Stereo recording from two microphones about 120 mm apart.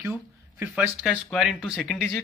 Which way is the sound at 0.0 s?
20° right (ahead or behind).